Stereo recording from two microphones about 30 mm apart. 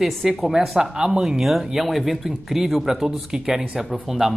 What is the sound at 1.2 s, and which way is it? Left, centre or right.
A man's voice, centre.